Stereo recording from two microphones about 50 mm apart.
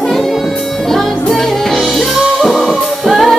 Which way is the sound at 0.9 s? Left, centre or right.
Centre.